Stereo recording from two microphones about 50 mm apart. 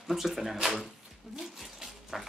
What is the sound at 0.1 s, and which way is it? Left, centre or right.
Speech, centre.